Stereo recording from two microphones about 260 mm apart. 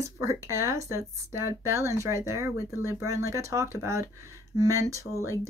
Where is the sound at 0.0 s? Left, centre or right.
Centre.